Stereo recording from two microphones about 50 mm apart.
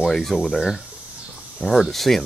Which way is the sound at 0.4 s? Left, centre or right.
Centre.